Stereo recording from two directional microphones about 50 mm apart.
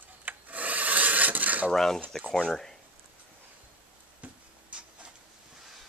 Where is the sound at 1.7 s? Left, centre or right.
Centre.